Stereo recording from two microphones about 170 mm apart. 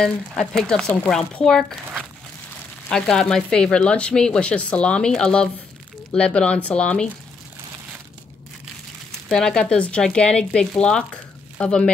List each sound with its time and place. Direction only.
0.0 s speech: 5° left (ahead or behind)
2.9 s speech: 5° left (ahead or behind)
9.3 s speech: 5° left (ahead or behind)